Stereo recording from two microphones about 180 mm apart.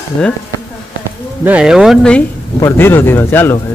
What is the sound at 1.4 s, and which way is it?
Speech, 5° right (ahead or behind).